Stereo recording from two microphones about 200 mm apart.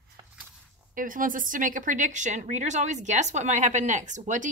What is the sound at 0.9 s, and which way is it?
A woman's voice, 40° right (ahead or behind).